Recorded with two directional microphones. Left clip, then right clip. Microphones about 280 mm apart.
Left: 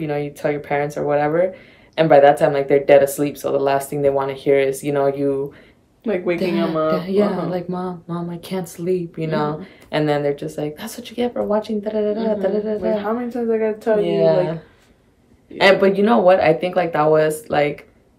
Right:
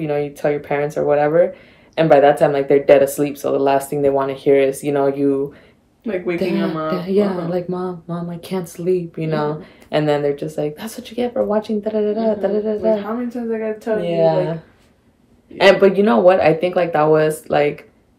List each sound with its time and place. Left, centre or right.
0.0 s speech: centre
6.0 s a woman's voice: centre
6.9 s speech: centre
12.9 s a woman's voice: centre
13.9 s speech: centre